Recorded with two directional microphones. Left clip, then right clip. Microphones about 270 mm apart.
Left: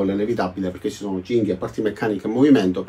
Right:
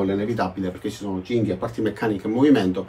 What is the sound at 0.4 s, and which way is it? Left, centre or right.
Speech, centre.